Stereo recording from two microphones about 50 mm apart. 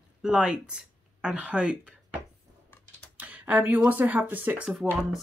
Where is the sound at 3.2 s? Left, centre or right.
Right.